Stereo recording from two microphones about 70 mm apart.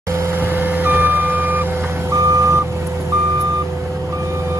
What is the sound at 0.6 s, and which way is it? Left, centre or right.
Vehicle, right.